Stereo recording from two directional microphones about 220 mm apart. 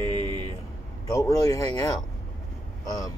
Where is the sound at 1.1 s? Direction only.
15° left (ahead or behind).